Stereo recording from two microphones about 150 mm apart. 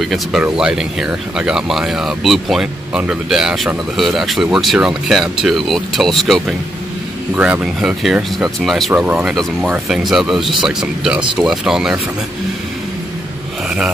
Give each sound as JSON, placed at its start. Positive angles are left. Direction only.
{"t": 0.0, "sound": "speech", "side_deg": 0}
{"t": 7.3, "sound": "speech", "side_deg": -10}
{"t": 8.9, "sound": "speech", "side_deg": -10}
{"t": 9.3, "sound": "speech", "side_deg": 0}